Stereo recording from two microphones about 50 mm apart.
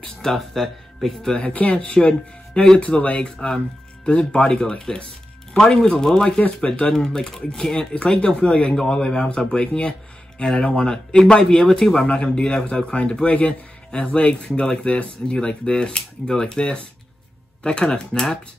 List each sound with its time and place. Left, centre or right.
0.3 s speech: centre
1.3 s speech: left
2.8 s a man's voice: left
3.3 s a man's voice: centre